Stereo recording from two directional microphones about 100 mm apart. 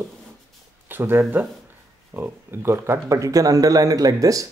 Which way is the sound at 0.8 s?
20° right (ahead or behind).